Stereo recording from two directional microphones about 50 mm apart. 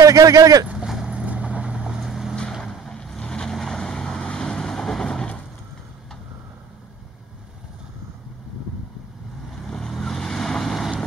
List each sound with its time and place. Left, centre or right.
0.1 s speech: right
0.7 s vehicle: centre
1.1 s vehicle: right
2.0 s boat: centre
2.6 s vehicle: centre
9.5 s vehicle: centre